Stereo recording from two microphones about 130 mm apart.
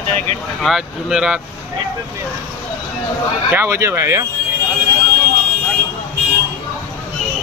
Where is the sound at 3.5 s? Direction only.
20° right (ahead or behind).